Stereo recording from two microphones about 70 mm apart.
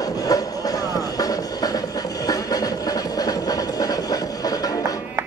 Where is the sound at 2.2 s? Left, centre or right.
Left.